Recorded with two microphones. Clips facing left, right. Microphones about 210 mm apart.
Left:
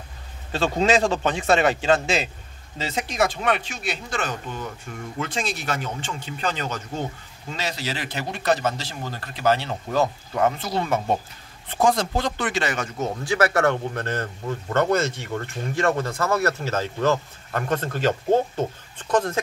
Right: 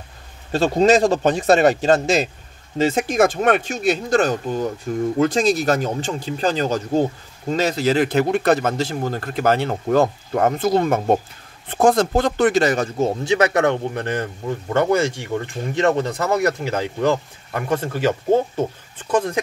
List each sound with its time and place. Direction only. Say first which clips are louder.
0.5 s speech: right 6 dB; 40° right (ahead or behind); by 19.4 s 10° right (ahead or behind)